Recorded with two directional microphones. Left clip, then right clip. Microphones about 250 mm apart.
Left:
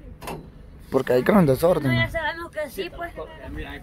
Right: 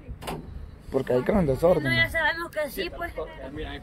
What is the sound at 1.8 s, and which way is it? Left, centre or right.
Speech, right.